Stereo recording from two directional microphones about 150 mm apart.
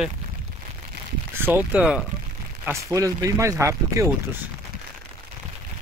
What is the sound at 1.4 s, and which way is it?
Speech, 15° right (ahead or behind).